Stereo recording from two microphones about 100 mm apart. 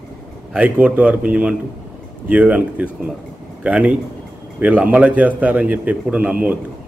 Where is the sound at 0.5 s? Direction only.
15° right (ahead or behind).